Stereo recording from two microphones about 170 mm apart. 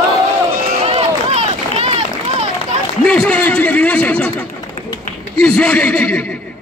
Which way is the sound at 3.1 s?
5° left (ahead or behind).